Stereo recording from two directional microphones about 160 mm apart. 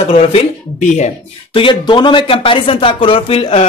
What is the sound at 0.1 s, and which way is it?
Speech, 40° left (ahead or behind).